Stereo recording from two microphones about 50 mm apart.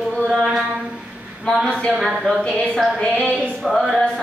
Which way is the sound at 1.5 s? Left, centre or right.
Centre.